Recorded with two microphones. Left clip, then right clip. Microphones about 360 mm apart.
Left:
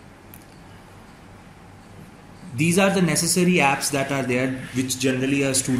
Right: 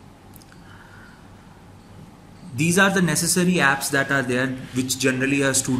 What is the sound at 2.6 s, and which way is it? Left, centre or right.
A man's voice, right.